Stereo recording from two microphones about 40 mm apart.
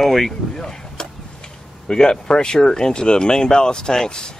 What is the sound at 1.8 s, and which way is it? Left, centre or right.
Speech, centre.